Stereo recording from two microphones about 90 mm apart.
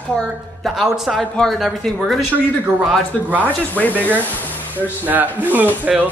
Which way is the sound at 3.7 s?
20° left (ahead or behind).